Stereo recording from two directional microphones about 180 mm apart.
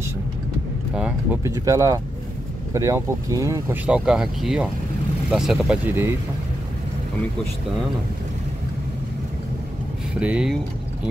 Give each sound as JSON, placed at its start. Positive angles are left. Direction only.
{"t": 0.9, "sound": "speech", "side_deg": -5}
{"t": 1.4, "sound": "speech", "side_deg": -20}
{"t": 10.2, "sound": "speech", "side_deg": -5}